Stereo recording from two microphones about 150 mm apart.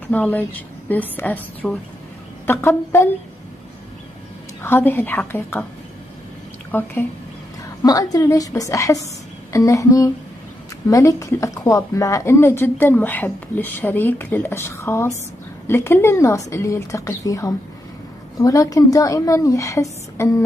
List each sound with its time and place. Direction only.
0.1 s a woman's voice: 10° left (ahead or behind)
4.6 s a woman's voice: 15° left (ahead or behind)
6.7 s a woman's voice: 15° left (ahead or behind)
7.8 s a woman's voice: 25° left (ahead or behind)